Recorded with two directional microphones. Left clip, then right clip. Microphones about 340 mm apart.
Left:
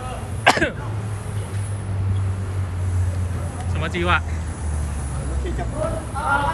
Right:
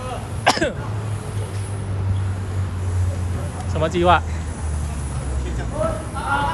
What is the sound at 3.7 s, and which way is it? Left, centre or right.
Speech, centre.